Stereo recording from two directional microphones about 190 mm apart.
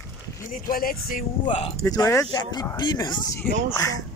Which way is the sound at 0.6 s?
50° left (ahead or behind).